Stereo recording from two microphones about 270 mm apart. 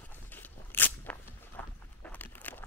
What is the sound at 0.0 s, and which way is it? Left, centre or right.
Walk, centre.